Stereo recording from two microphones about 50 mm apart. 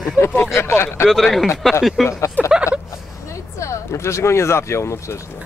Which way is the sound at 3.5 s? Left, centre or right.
Left.